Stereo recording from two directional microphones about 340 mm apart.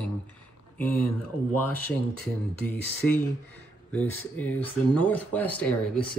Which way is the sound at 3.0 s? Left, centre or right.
Centre.